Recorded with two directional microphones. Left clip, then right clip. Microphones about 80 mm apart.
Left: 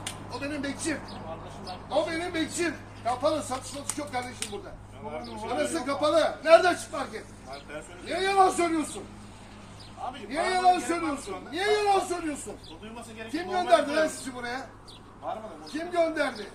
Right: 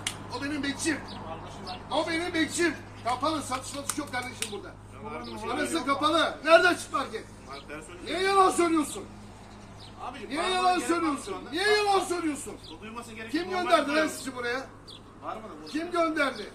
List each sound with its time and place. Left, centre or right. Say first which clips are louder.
0.0 s a sound: right 1 dB; left
1.9 s a man's voice: left 1 dB; left
8.0 s a man's voice: even; left
10.1 s a man's voice: left 1 dB; centre
13.3 s speech: left 2 dB; left
15.9 s a man's voice: left 1 dB; left